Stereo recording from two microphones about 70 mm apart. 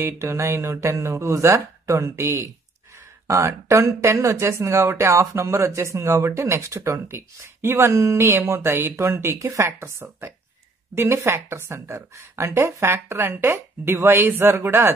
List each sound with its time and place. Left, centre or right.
0.0 s a woman's voice: right